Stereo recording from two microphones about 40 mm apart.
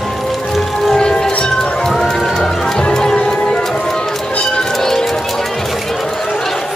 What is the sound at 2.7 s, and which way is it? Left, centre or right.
Music, centre.